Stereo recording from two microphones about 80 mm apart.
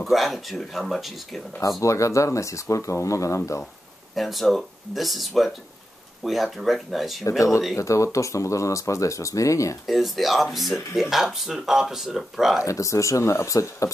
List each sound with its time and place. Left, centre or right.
0.0 s speech: centre
1.8 s speech: left
4.1 s speech: centre
7.2 s speech: left
9.8 s speech: centre
12.6 s speech: left